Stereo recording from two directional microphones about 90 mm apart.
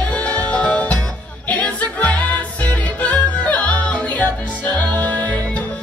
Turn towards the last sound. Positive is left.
turn(degrees=15)  # may be behind; listen again after turning